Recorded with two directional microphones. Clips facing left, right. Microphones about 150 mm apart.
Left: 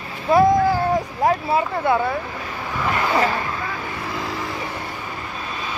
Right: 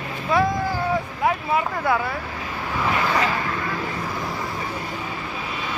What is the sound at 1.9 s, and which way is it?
Speech, 25° left (ahead or behind).